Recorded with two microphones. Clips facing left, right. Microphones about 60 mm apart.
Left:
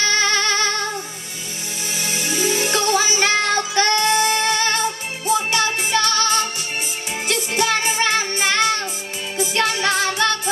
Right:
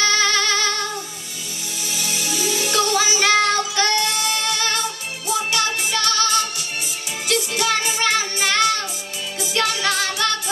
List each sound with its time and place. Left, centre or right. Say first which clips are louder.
0.0 s music: even; left
2.0 s music: left 3 dB; left